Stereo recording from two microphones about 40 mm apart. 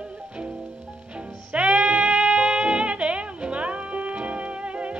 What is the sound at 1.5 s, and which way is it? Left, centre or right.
Music, right.